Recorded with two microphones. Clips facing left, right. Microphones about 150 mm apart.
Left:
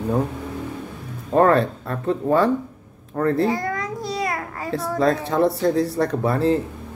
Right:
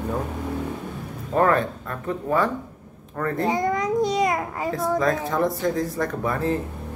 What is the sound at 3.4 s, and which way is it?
Babbling, 20° right (ahead or behind).